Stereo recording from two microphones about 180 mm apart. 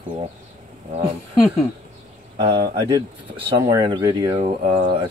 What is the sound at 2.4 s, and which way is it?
Speech, 30° right (ahead or behind).